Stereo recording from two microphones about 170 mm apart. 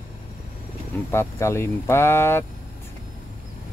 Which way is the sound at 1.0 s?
15° left (ahead or behind).